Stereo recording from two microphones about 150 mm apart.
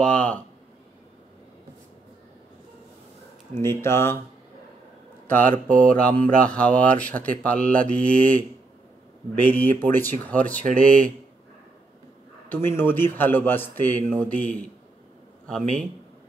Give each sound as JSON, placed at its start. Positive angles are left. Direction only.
{"t": 0.0, "sound": "a man's voice", "side_deg": 5}
{"t": 3.5, "sound": "a man's voice", "side_deg": 15}
{"t": 5.3, "sound": "a man's voice", "side_deg": 10}
{"t": 12.4, "sound": "a man's voice", "side_deg": 15}